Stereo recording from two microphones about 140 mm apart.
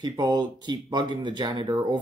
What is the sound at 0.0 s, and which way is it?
Speech, 30° right (ahead or behind).